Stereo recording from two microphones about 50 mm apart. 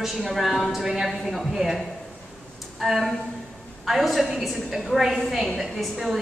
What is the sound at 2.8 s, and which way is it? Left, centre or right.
A woman's voice, centre.